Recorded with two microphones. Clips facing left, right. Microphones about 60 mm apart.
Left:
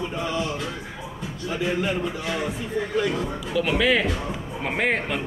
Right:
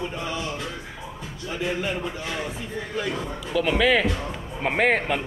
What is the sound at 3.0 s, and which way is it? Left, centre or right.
Speech, centre.